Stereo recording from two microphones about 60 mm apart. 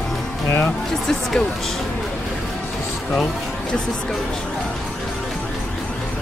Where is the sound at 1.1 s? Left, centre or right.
Centre.